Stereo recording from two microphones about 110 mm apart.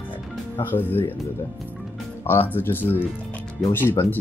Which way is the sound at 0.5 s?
20° left (ahead or behind).